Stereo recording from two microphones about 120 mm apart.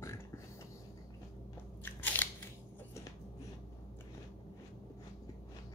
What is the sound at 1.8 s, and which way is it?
Biting, 15° left (ahead or behind).